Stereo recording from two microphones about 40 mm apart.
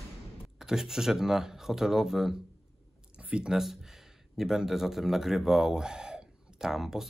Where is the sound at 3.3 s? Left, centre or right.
Right.